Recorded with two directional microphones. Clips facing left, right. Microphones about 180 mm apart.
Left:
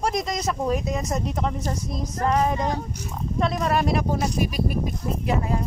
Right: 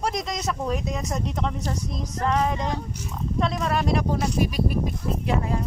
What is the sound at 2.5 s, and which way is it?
Speech, 45° left (ahead or behind).